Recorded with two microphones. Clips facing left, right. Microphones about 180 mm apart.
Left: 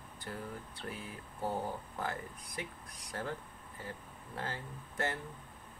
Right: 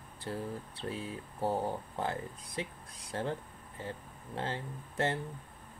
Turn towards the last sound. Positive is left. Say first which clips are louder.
# right 4 dB
turn(degrees=-25)  # may be behind; listen again after turning